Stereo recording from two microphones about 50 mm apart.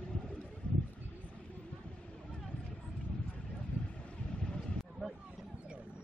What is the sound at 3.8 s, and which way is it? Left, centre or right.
Vehicle, centre.